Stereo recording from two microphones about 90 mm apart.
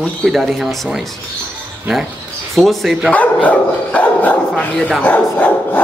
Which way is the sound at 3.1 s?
15° left (ahead or behind).